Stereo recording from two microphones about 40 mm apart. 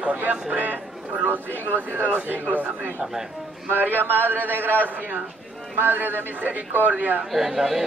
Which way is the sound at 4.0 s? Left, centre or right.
Right.